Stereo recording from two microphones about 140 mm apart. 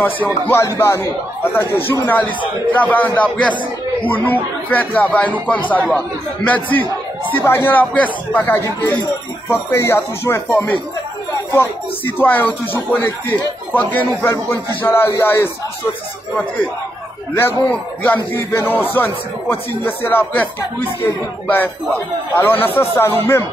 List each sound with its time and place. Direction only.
0.0 s a man's voice: 15° left (ahead or behind)
4.1 s a man's voice: 15° left (ahead or behind)
12.2 s a man's voice: 15° left (ahead or behind)
17.3 s a man's voice: 15° left (ahead or behind)